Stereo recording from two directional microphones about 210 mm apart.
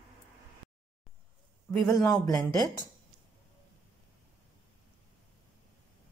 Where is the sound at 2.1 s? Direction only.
15° left (ahead or behind).